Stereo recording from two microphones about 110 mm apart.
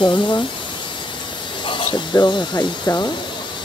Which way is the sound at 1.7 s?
45° left (ahead or behind).